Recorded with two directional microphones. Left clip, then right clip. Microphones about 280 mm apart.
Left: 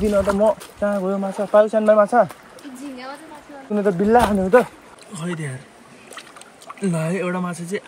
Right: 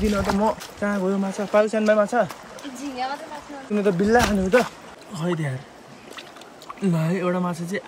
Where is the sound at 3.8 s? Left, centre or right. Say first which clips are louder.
Left 3 dB; centre.